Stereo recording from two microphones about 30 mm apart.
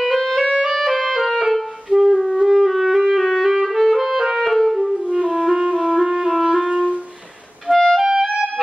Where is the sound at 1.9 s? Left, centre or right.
Centre.